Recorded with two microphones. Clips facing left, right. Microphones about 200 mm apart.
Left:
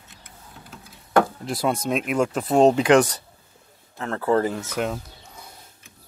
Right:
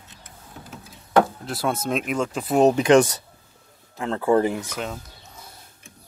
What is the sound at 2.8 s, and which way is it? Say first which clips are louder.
Speech: right 1 dB; 25° right (ahead or behind).